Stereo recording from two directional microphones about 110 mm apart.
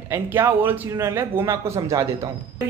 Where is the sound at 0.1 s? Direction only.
20° right (ahead or behind).